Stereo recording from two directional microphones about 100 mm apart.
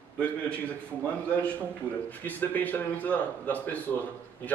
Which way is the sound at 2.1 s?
20° left (ahead or behind).